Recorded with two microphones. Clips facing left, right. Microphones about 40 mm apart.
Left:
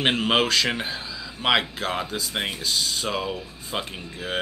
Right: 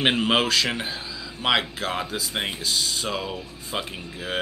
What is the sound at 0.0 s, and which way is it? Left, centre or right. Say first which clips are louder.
Speech: even; centre.